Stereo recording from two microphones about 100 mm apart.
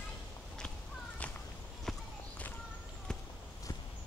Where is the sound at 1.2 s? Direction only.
15° left (ahead or behind).